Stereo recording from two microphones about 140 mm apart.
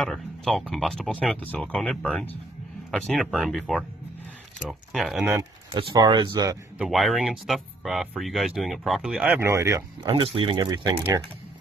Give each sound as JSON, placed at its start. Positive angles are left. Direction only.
{"t": 0.0, "sound": "speech", "side_deg": 0}
{"t": 5.7, "sound": "speech", "side_deg": -35}
{"t": 6.8, "sound": "speech", "side_deg": 0}
{"t": 10.0, "sound": "speech", "side_deg": -35}